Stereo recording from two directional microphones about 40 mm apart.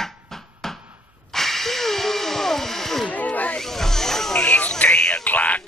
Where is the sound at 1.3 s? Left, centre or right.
Centre.